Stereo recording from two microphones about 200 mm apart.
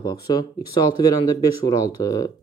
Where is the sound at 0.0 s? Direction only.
20° left (ahead or behind).